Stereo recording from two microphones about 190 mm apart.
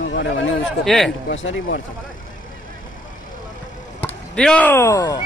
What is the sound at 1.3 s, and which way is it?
Speech, 80° left.